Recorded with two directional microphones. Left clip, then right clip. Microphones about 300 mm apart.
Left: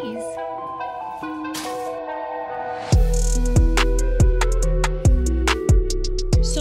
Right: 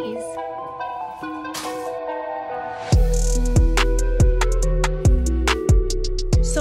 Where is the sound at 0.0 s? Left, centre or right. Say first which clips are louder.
Even; centre.